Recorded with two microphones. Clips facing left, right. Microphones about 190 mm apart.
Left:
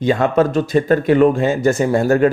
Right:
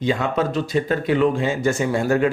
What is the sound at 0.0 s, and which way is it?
A man's voice, 50° left (ahead or behind).